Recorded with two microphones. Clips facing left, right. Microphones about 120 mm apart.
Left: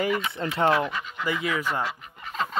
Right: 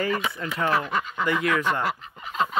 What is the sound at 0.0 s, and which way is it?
Speech, 25° left (ahead or behind).